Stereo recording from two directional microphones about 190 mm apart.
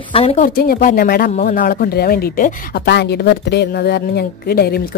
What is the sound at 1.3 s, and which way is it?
Speech, 40° left (ahead or behind).